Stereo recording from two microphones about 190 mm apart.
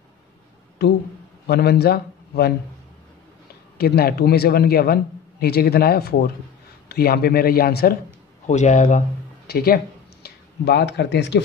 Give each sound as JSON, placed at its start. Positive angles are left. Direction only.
{"t": 0.8, "sound": "a man's voice", "side_deg": 60}
{"t": 3.7, "sound": "a man's voice", "side_deg": 55}
{"t": 8.5, "sound": "speech", "side_deg": 40}
{"t": 9.5, "sound": "a man's voice", "side_deg": 55}